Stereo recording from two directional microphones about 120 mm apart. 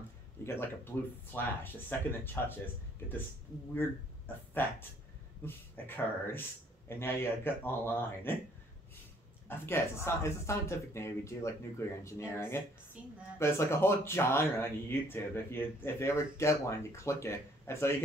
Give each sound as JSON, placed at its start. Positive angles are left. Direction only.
{"t": 0.4, "sound": "speech", "side_deg": 20}
{"t": 5.4, "sound": "speech", "side_deg": 20}
{"t": 9.5, "sound": "speech", "side_deg": 20}